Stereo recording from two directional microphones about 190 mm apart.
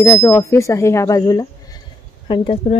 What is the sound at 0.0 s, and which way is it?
Speech, 15° left (ahead or behind).